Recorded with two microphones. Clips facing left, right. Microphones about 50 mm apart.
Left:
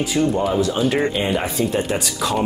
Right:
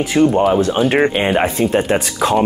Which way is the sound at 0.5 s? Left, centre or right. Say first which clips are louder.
Right 5 dB; right.